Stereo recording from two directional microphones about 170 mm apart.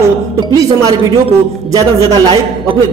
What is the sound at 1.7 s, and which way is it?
Speech, 25° right (ahead or behind).